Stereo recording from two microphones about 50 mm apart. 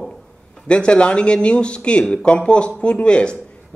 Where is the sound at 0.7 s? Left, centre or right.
Left.